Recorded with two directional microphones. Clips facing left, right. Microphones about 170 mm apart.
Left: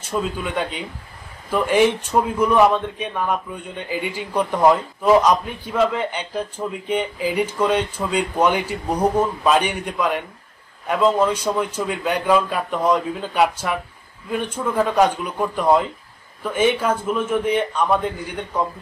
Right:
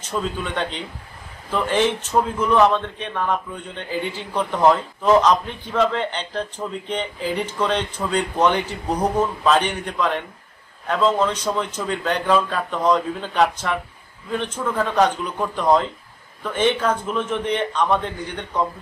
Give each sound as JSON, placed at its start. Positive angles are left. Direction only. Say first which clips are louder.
{"t": 0.0, "sound": "a man's voice", "louder": "left 1 dB", "side_deg": 10}